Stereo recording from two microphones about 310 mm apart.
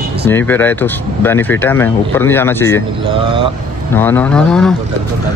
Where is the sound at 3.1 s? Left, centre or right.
Centre.